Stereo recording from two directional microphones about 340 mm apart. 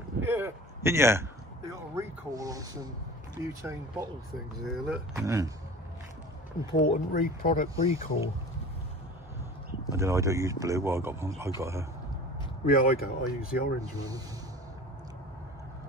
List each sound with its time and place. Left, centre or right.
0.2 s speech: centre
6.8 s speech: left
9.9 s speech: centre
12.6 s speech: left
13.7 s speech: centre